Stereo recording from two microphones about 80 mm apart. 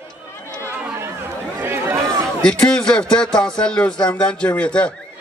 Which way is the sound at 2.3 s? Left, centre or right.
Centre.